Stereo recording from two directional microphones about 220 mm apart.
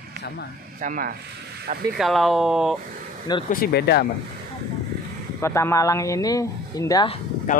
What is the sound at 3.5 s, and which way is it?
Speech, 45° left (ahead or behind).